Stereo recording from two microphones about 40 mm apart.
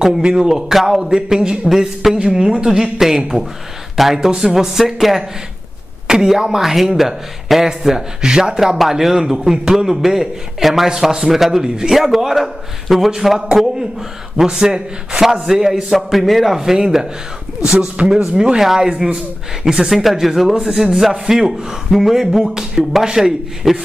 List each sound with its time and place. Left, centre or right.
0.2 s a man's voice: centre
8.5 s a man's voice: centre
14.3 s a man's voice: centre
17.6 s a man's voice: right
18.6 s a man's voice: centre
22.5 s a man's voice: centre